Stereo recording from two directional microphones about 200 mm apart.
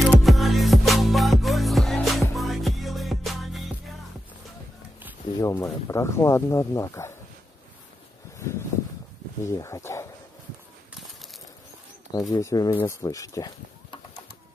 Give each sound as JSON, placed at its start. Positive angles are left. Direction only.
{"t": 0.0, "sound": "music", "side_deg": 0}
{"t": 5.4, "sound": "speech", "side_deg": 15}
{"t": 9.4, "sound": "speech", "side_deg": 15}
{"t": 12.1, "sound": "speech", "side_deg": 15}